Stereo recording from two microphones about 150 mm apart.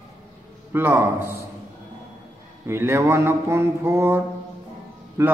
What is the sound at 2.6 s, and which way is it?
Speech, 15° right (ahead or behind).